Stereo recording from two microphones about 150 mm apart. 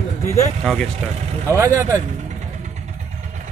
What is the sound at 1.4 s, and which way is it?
Speech, 20° right (ahead or behind).